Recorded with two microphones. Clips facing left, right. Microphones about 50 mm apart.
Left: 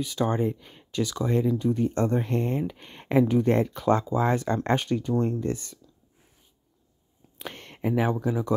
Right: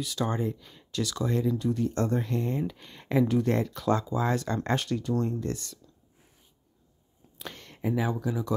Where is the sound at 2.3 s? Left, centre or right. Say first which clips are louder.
Left 3 dB; left.